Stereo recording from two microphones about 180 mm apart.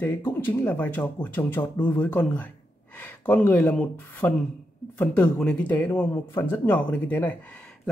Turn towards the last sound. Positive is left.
turn(degrees=5)  # may be behind; listen again after turning